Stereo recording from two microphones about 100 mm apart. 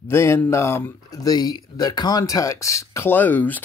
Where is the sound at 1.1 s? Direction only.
40° left (ahead or behind).